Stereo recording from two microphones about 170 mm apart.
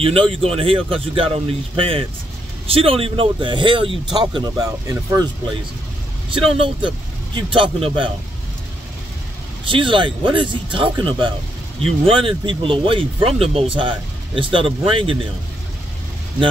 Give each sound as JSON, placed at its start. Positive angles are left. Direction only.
{"t": 0.0, "sound": "speech", "side_deg": -35}
{"t": 6.3, "sound": "speech", "side_deg": -30}
{"t": 9.7, "sound": "speech", "side_deg": -30}